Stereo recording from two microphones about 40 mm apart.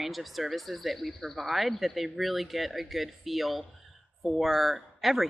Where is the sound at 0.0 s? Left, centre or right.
Centre.